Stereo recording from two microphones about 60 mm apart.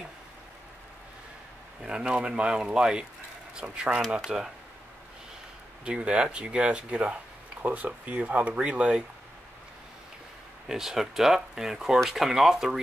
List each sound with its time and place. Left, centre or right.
1.8 s speech: centre
5.9 s speech: centre
10.7 s speech: centre